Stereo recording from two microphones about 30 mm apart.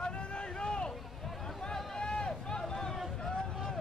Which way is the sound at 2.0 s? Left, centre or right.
Left.